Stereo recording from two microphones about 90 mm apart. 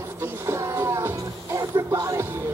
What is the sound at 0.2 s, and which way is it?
Music, 35° right (ahead or behind).